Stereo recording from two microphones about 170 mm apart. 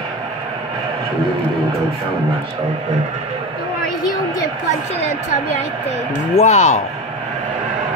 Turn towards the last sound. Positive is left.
turn(degrees=40)  # may be behind; listen again after turning